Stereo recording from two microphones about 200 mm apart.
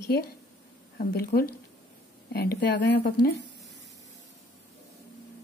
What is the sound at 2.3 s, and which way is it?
Speech, 50° left (ahead or behind).